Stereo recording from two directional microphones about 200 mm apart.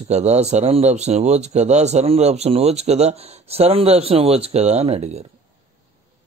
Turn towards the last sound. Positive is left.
turn(degrees=-30)  # may be behind; listen again after turning